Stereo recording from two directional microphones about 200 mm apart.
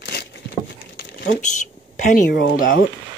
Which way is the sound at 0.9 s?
55° left (ahead or behind).